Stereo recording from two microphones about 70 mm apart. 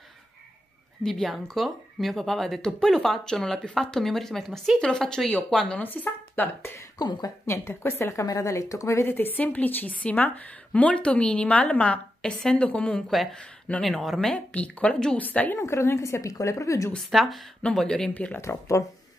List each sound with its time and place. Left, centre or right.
1.0 s speech: centre
5.8 s speech: left
7.0 s a woman's voice: left
7.4 s a woman's voice: left
9.0 s a woman's voice: left
13.8 s speech: centre
14.2 s a woman's voice: centre
15.5 s a woman's voice: left
17.1 s speech: centre
17.6 s speech: centre
18.1 s a woman's voice: left
18.4 s a woman's voice: left